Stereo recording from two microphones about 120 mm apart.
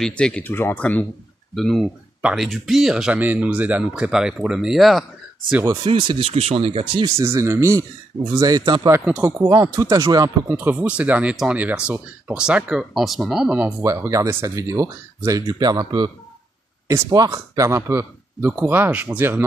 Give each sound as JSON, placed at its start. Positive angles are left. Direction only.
{"t": 0.0, "sound": "speech", "side_deg": 10}
{"t": 1.5, "sound": "speech", "side_deg": 0}
{"t": 5.9, "sound": "speech", "side_deg": -45}
{"t": 7.2, "sound": "speech", "side_deg": -25}
{"t": 10.5, "sound": "speech", "side_deg": -15}
{"t": 13.8, "sound": "speech", "side_deg": -25}